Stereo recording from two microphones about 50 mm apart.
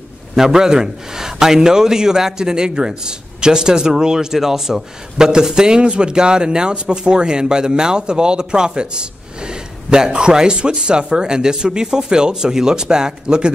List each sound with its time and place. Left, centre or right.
0.4 s a man's voice: centre